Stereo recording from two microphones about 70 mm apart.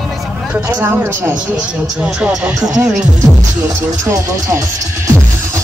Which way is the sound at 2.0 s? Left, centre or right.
Centre.